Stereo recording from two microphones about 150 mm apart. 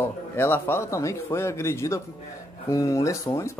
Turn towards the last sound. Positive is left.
turn(degrees=20)  # may be behind; listen again after turning